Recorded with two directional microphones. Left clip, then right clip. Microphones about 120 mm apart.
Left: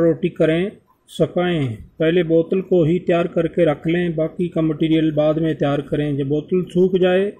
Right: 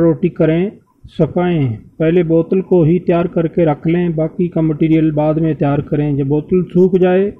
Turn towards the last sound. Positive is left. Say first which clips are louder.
# right 4 dB
turn(degrees=-20)  # may be behind; listen again after turning